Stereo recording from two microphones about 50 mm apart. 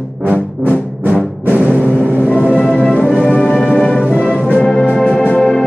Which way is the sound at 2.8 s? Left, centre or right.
Centre.